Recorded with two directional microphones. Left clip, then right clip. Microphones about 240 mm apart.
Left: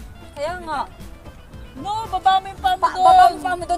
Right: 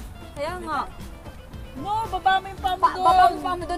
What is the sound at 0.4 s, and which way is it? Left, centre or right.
Speech, left.